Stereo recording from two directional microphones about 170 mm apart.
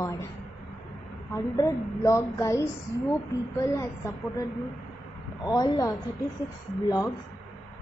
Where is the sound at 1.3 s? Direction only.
15° left (ahead or behind).